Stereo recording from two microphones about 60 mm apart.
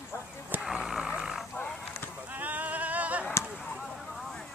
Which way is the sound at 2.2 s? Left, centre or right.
Right.